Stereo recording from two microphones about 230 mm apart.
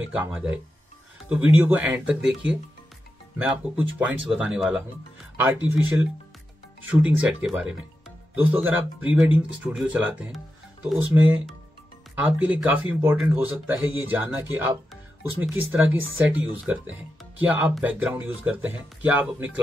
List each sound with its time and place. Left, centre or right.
0.1 s speech: centre
15.7 s speech: centre